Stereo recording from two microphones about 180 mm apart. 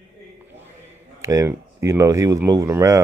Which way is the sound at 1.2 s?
15° right (ahead or behind).